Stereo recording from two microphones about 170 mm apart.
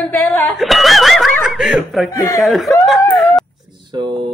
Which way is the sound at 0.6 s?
Centre (ahead or behind).